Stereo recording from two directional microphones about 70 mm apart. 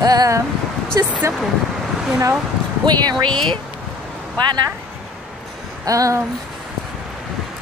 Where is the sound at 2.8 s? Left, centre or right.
Right.